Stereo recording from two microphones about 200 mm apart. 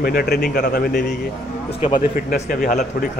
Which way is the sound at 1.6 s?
30° left (ahead or behind).